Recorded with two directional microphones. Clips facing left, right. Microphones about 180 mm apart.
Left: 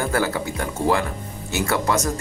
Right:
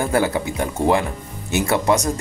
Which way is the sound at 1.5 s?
20° right (ahead or behind).